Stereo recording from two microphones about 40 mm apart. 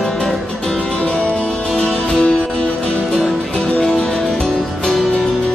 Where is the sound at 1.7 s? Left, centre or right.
Left.